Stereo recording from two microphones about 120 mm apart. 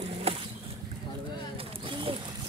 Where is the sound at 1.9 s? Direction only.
50° right (ahead or behind).